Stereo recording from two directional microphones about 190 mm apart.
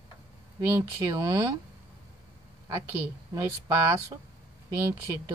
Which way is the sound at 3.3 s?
15° right (ahead or behind).